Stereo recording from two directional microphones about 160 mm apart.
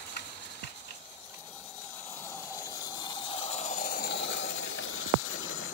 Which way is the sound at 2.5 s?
25° left (ahead or behind).